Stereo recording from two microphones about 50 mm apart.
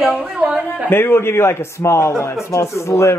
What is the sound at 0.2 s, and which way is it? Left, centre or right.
Speech, right.